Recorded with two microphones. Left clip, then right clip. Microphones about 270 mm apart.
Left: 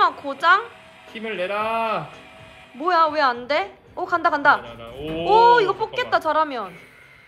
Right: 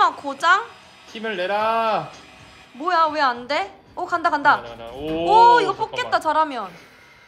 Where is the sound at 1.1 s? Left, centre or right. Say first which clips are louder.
Right 2 dB; right.